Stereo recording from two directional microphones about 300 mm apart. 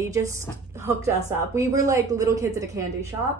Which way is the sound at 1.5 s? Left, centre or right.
Centre.